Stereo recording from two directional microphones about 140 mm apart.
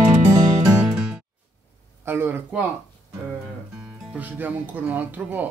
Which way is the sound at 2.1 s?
15° right (ahead or behind).